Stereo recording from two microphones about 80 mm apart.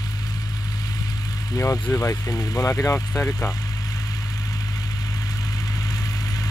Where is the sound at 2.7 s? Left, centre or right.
Left.